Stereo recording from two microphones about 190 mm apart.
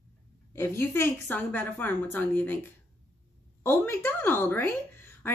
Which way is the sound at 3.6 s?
15° left (ahead or behind).